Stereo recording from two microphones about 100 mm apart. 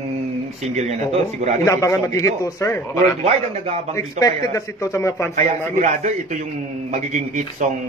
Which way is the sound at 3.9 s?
35° left (ahead or behind).